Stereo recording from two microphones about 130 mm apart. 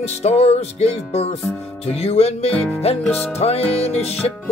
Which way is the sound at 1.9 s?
50° left (ahead or behind).